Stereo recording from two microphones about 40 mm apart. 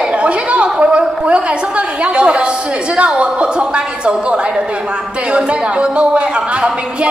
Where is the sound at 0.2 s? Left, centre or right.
Right.